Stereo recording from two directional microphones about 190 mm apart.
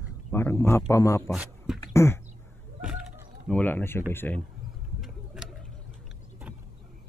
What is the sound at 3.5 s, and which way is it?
Speech, 10° left (ahead or behind).